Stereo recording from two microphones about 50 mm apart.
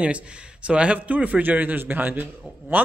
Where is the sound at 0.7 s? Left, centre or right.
Right.